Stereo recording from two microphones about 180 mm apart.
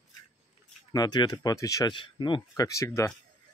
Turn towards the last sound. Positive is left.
turn(degrees=15)  # may be behind; listen again after turning